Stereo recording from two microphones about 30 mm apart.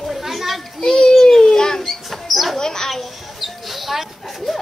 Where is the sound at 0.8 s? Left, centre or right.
Left.